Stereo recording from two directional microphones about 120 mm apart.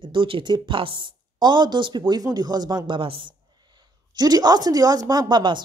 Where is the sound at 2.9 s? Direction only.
45° right (ahead or behind).